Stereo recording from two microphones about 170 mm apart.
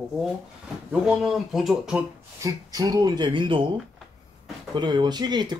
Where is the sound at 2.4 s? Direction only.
20° right (ahead or behind).